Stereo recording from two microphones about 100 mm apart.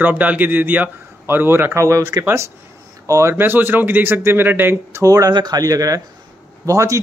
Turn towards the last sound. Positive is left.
turn(degrees=-30)  # may be behind; listen again after turning